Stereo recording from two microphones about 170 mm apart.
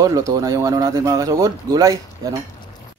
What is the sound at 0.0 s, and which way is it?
Speech, 20° right (ahead or behind).